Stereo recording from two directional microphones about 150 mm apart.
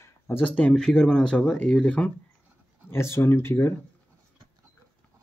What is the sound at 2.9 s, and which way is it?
Speech, 15° left (ahead or behind).